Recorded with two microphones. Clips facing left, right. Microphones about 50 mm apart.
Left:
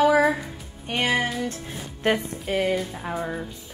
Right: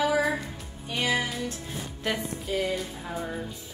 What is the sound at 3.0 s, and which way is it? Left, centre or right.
Music, left.